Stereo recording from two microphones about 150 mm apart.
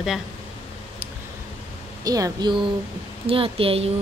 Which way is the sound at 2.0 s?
25° right (ahead or behind).